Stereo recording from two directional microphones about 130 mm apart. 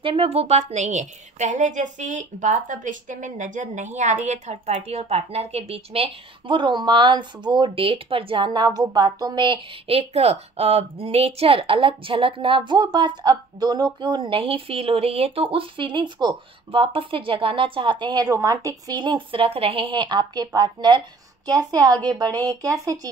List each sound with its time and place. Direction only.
0.0 s a woman's voice: 45° right (ahead or behind); by 22.9 s 25° right (ahead or behind)